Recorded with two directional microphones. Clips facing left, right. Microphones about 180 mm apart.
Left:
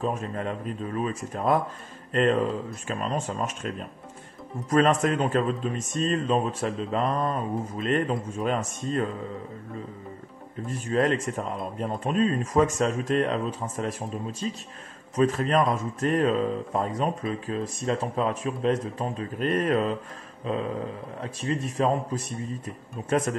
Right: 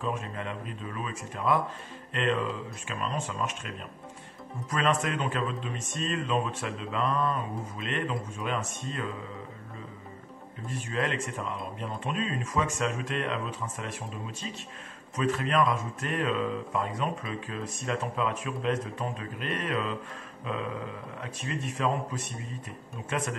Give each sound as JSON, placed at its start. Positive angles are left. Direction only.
{"t": 0.0, "sound": "speech", "side_deg": 40}
{"t": 10.7, "sound": "speech", "side_deg": 40}